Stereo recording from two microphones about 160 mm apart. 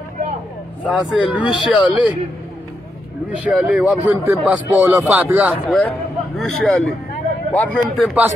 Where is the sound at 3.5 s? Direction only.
10° right (ahead or behind).